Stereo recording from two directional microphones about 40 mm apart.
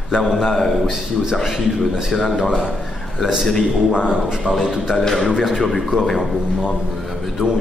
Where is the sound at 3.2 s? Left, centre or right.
Centre.